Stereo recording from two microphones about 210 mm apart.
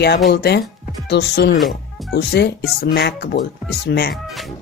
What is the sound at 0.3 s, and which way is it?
Speech, 50° left (ahead or behind).